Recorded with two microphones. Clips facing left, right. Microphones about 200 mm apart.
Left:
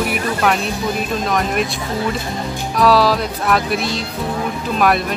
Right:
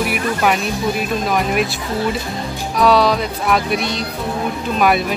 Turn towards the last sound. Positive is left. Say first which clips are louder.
# right 1 dB
turn(degrees=0)  # may be behind; listen again after turning